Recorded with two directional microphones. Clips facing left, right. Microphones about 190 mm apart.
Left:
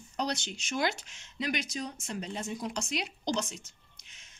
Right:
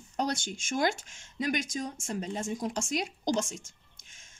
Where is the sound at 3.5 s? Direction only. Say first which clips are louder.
Right 3 dB; 50° right (ahead or behind).